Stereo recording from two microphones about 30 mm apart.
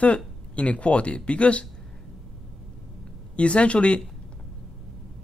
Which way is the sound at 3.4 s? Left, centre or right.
Left.